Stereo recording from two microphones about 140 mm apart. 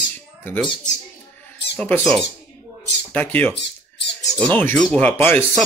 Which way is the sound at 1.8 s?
5° left (ahead or behind).